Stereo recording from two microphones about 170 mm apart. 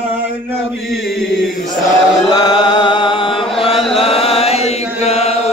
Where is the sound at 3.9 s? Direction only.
35° left (ahead or behind).